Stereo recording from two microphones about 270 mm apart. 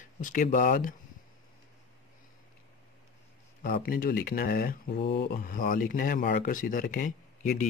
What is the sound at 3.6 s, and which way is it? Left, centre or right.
Speech, left.